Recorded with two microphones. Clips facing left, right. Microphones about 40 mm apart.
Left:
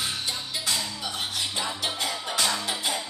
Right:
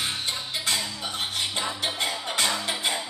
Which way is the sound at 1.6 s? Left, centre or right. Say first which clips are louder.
Right 1 dB; right.